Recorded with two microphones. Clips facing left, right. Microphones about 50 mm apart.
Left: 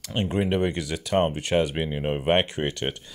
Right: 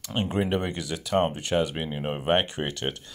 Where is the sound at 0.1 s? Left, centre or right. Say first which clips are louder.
Left 1 dB; centre.